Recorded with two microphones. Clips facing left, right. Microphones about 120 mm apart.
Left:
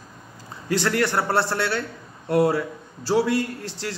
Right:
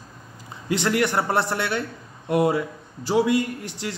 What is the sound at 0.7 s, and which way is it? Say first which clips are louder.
A man's voice: even; 20° right (ahead or behind).